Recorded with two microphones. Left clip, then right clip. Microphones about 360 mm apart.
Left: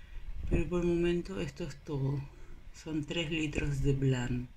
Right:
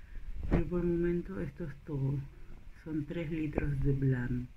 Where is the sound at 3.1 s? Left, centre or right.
Left.